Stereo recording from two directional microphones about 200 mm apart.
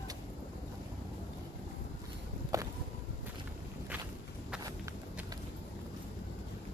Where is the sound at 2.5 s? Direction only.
15° right (ahead or behind).